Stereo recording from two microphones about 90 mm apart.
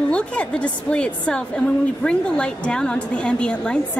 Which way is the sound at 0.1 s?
10° left (ahead or behind).